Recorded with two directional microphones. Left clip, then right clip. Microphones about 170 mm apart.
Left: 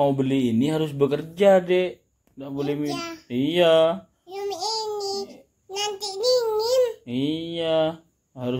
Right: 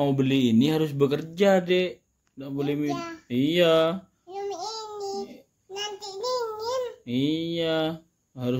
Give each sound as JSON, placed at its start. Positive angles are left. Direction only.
{"t": 0.0, "sound": "speech", "side_deg": -25}
{"t": 2.9, "sound": "a child's voice", "side_deg": -10}
{"t": 3.3, "sound": "speech", "side_deg": -20}
{"t": 4.3, "sound": "child singing", "side_deg": -10}
{"t": 7.1, "sound": "speech", "side_deg": -20}